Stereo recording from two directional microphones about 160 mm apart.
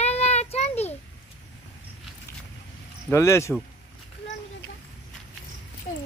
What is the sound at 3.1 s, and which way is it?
Speech, 15° left (ahead or behind).